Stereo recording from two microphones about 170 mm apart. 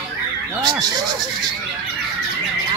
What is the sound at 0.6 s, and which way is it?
Speech, 25° right (ahead or behind).